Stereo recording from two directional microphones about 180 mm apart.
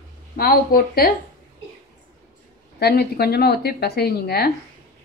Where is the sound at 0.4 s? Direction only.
55° left (ahead or behind).